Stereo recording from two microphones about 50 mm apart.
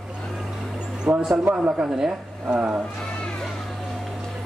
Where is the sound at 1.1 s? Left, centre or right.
Right.